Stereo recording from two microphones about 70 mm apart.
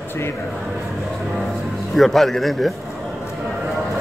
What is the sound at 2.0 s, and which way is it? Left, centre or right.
Speech, centre.